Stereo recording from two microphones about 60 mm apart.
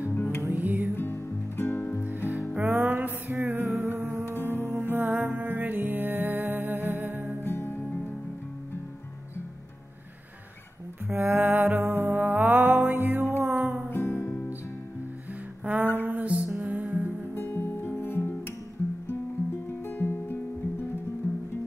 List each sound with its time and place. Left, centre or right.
0.1 s music: left
0.6 s music: right
0.9 s music: left
2.0 s music: right
7.4 s music: left
11.1 s music: right
13.8 s music: left
15.6 s music: right
17.3 s music: left
19.9 s music: left